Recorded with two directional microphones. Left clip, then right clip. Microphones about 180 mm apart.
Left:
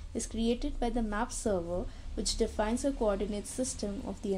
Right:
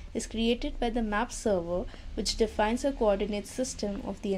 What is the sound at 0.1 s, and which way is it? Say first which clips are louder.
A woman's voice: right 4 dB; 10° right (ahead or behind).